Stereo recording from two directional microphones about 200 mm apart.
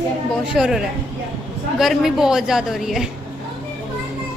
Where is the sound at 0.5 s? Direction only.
5° right (ahead or behind).